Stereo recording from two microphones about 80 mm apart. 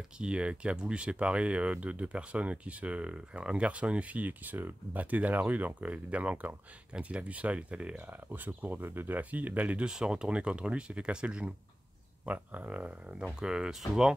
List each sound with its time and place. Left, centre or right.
0.2 s speech: centre